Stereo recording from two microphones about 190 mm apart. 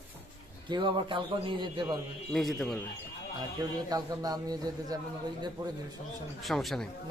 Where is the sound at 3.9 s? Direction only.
20° right (ahead or behind).